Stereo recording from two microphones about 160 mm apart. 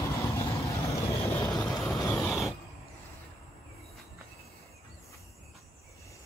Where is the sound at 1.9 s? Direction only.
20° left (ahead or behind).